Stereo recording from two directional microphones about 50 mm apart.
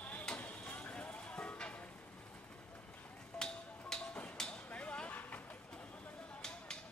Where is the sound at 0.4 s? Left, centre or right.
Left.